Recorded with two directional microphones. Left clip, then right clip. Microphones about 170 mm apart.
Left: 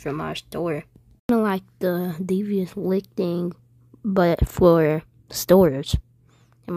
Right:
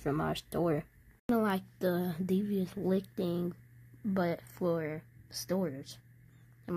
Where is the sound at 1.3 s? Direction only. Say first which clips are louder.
Left 9 dB; 25° left (ahead or behind).